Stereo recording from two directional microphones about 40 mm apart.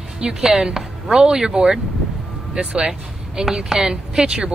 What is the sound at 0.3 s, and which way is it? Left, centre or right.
Speech, centre.